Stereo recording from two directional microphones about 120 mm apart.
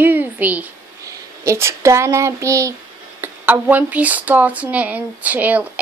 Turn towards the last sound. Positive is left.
turn(degrees=-15)  # may be behind; listen again after turning